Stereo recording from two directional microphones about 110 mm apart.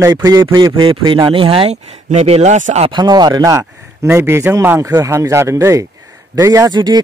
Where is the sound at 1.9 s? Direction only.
85° right.